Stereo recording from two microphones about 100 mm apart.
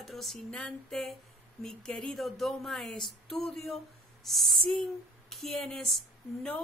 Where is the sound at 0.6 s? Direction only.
5° left (ahead or behind).